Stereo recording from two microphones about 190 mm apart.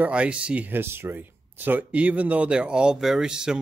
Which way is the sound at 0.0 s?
5° right (ahead or behind).